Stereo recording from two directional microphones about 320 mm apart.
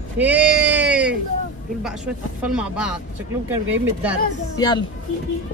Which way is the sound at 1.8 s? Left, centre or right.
Centre.